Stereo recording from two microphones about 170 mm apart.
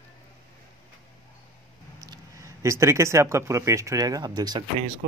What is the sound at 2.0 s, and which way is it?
Speech, 20° right (ahead or behind).